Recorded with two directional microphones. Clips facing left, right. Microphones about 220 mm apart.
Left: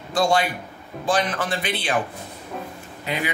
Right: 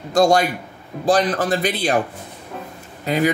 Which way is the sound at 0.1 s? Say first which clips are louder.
Right 5 dB; 45° right (ahead or behind).